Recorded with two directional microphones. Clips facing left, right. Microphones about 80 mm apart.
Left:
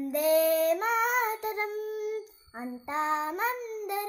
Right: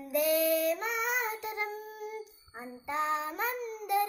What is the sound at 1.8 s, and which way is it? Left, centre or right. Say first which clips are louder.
Child singing: left 9 dB; left.